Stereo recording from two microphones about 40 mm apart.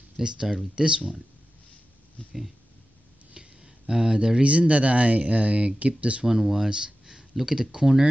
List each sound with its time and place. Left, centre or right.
0.2 s speech: centre
2.2 s speech: left
3.3 s speech: right
6.2 s speech: centre
6.7 s speech: centre